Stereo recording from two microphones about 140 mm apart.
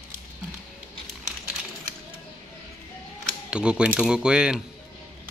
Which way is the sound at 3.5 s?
5° right (ahead or behind).